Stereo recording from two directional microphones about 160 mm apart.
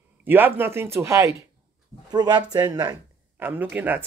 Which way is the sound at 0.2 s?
10° right (ahead or behind).